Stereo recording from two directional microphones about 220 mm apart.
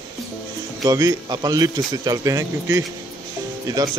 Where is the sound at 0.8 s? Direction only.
15° right (ahead or behind).